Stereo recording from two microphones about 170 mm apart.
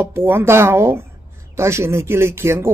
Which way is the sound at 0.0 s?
15° right (ahead or behind).